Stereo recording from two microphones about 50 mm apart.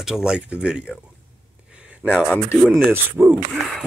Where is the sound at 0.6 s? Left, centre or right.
Right.